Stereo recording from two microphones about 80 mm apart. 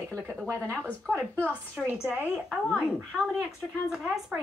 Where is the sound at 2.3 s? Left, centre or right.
Centre.